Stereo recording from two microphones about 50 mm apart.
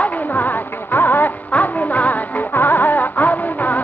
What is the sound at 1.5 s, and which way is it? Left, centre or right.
Music, left.